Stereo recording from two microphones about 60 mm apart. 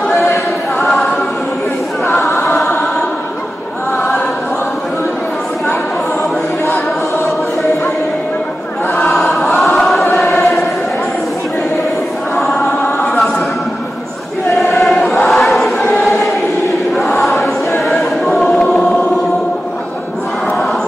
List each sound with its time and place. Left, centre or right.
0.7 s choir: centre
2.4 s choir: centre
9.0 s choir: centre
12.5 s chant: left
14.8 s choir: centre